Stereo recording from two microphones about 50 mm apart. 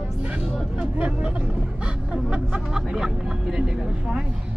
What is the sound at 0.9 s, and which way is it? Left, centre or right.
Vehicle, right.